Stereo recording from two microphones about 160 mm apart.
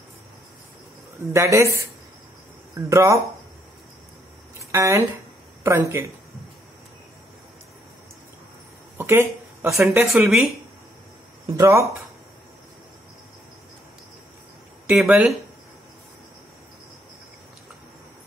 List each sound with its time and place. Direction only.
1.3 s speech: 20° right (ahead or behind)
4.6 s speech: 20° right (ahead or behind)
8.9 s a sound: 15° right (ahead or behind)
9.8 s speech: 5° right (ahead or behind)
11.5 s speech: 20° right (ahead or behind)
14.9 s speech: 5° right (ahead or behind)